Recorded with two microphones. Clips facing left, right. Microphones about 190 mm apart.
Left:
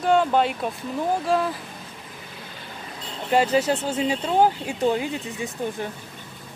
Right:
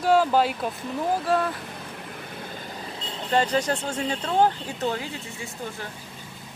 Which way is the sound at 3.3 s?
10° left (ahead or behind).